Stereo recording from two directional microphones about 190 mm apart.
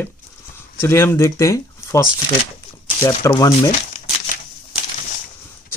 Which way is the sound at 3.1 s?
15° left (ahead or behind).